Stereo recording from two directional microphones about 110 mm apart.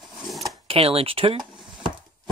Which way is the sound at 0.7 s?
65° right (ahead or behind).